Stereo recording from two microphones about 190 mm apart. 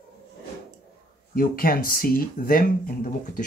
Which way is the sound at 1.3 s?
50° left (ahead or behind).